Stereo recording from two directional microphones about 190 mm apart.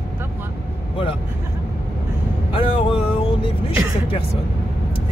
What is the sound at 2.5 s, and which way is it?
Vehicle, 25° left (ahead or behind).